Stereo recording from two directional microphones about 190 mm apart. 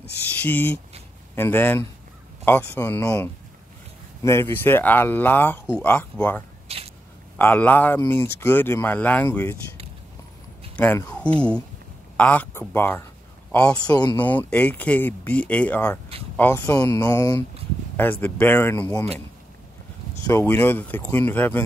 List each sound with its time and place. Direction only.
0.4 s speech: 10° left (ahead or behind)
6.7 s a sound: 30° right (ahead or behind)
7.3 s speech: 10° left (ahead or behind)
10.8 s a man's voice: 10° left (ahead or behind)
20.2 s speech: 15° left (ahead or behind)